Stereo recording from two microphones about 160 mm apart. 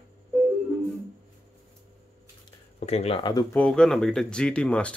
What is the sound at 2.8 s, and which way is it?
Speech, 40° left (ahead or behind).